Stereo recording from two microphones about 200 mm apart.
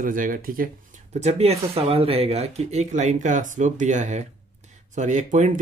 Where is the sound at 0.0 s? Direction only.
45° right (ahead or behind).